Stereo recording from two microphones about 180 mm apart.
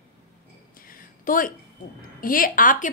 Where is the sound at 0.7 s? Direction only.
50° left (ahead or behind).